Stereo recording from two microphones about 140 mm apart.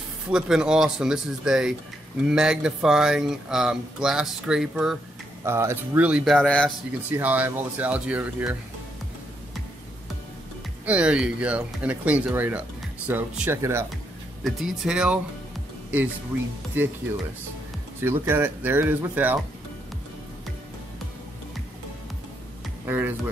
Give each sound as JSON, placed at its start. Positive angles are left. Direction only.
{"t": 0.3, "sound": "speech", "side_deg": -5}
{"t": 5.4, "sound": "speech", "side_deg": -20}
{"t": 6.2, "sound": "speech", "side_deg": 5}
{"t": 7.1, "sound": "speech", "side_deg": -10}
{"t": 10.9, "sound": "speech", "side_deg": -5}
{"t": 14.4, "sound": "speech", "side_deg": 0}
{"t": 16.8, "sound": "speech", "side_deg": -15}
{"t": 18.0, "sound": "speech", "side_deg": -15}
{"t": 22.8, "sound": "speech", "side_deg": -15}